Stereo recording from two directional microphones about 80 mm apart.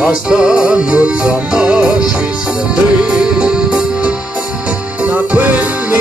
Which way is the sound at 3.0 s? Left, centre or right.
Centre.